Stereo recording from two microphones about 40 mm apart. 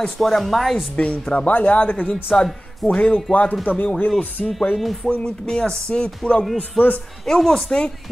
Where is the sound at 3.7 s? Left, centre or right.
Left.